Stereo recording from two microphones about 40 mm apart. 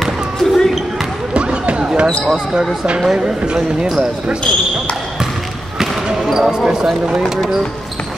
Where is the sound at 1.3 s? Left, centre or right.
Right.